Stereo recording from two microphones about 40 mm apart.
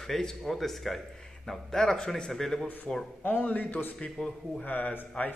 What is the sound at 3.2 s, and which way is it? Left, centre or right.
A man's voice, left.